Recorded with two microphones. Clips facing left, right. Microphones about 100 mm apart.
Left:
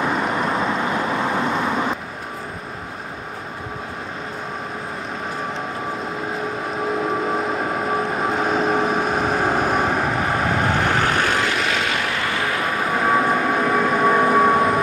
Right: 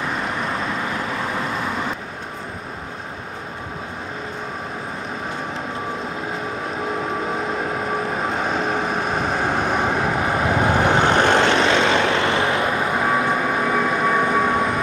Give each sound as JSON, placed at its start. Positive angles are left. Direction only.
{"t": 7.0, "sound": "vehicle", "side_deg": 0}
{"t": 10.8, "sound": "vehicle", "side_deg": -20}
{"t": 13.1, "sound": "vehicle", "side_deg": 0}